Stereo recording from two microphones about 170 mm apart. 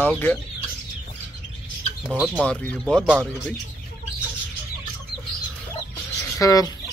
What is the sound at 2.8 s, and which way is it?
Speech, 5° right (ahead or behind).